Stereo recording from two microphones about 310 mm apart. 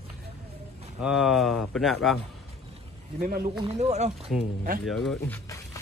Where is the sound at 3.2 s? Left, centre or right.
Right.